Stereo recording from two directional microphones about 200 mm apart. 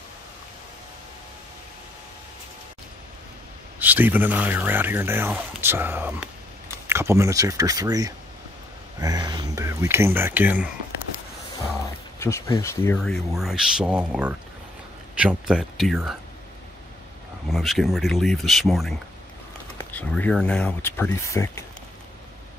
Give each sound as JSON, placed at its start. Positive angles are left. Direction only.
{"t": 3.8, "sound": "speech", "side_deg": -10}
{"t": 12.2, "sound": "speech", "side_deg": 15}
{"t": 17.5, "sound": "speech", "side_deg": 0}